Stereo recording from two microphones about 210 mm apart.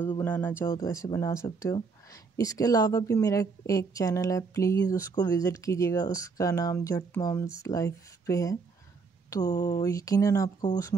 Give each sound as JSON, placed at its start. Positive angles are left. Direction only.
{"t": 0.2, "sound": "a woman's voice", "side_deg": 10}